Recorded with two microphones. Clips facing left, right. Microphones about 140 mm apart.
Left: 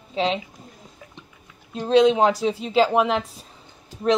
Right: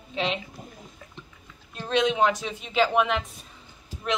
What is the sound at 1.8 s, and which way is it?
A woman's voice, 30° left (ahead or behind).